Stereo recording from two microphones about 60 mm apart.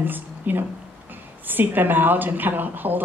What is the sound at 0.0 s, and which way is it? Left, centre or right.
A woman's voice, right.